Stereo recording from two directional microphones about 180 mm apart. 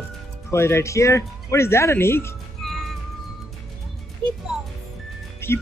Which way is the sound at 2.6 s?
Centre (ahead or behind).